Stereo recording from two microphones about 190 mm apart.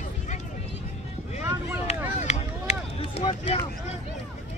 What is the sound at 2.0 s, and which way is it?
Run, 35° left (ahead or behind).